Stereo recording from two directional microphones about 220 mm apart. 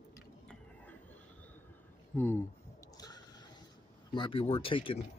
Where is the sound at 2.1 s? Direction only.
10° left (ahead or behind).